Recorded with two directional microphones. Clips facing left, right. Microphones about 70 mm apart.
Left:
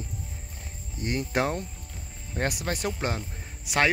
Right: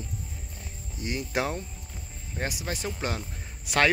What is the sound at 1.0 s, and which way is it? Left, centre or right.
Speech, left.